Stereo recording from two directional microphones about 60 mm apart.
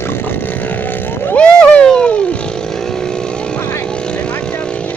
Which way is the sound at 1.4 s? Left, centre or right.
Centre.